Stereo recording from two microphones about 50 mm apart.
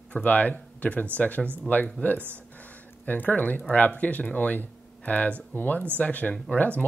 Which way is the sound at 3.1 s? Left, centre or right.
Left.